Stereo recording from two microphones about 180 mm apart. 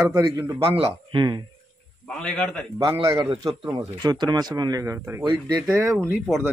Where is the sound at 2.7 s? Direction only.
20° right (ahead or behind).